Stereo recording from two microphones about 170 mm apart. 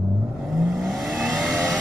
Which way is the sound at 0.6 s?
Centre (ahead or behind).